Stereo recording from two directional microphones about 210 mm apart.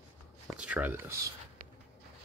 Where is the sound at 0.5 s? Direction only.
5° right (ahead or behind).